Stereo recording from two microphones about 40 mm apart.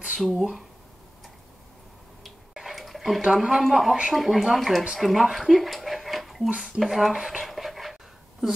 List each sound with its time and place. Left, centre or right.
0.2 s speech: centre
2.5 s bathtub: centre
3.3 s speech: centre
7.4 s dog: centre